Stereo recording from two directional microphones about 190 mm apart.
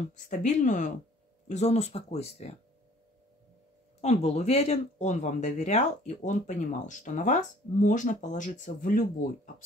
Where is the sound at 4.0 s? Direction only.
35° left (ahead or behind).